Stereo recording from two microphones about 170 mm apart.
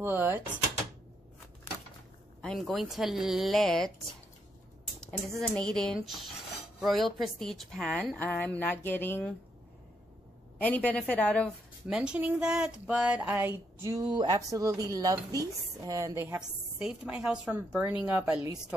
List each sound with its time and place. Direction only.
0.0 s a woman's voice: 10° right (ahead or behind)
2.4 s a woman's voice: centre (ahead or behind)
5.3 s a woman's voice: 5° left (ahead or behind)
10.6 s a woman's voice: 10° left (ahead or behind)
11.9 s a woman's voice: 5° right (ahead or behind)
16.3 s a woman's voice: 5° right (ahead or behind)